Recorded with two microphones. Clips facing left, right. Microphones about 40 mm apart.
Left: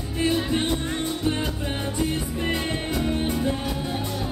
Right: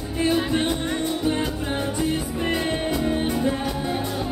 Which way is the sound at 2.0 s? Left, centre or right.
Centre.